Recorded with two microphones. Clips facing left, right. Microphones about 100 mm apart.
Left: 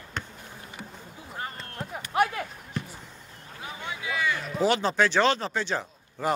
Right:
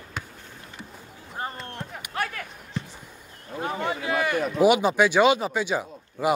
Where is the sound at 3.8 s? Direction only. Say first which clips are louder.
Right 3 dB; 50° right (ahead or behind).